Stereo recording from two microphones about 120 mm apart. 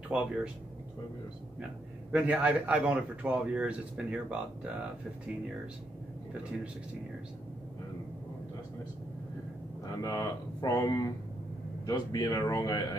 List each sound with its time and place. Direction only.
0.1 s speech: 10° right (ahead or behind)
2.1 s speech: 10° right (ahead or behind)
10.0 s speech: 35° left (ahead or behind)